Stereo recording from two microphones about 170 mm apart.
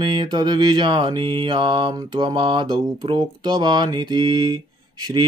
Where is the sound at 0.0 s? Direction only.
30° right (ahead or behind).